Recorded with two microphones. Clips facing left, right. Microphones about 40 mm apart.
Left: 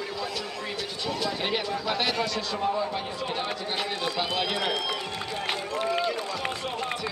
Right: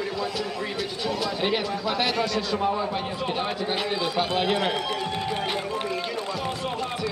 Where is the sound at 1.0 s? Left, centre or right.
Centre.